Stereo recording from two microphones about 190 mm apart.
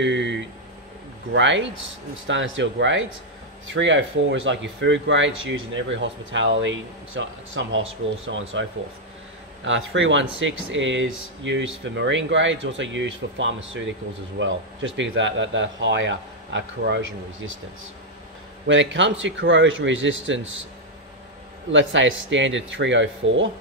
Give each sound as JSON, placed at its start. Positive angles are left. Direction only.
{"t": 0.0, "sound": "a sound", "side_deg": -70}
{"t": 1.3, "sound": "speech", "side_deg": -80}
{"t": 9.7, "sound": "speech", "side_deg": -90}
{"t": 18.7, "sound": "speech", "side_deg": -80}
{"t": 21.7, "sound": "speech", "side_deg": -85}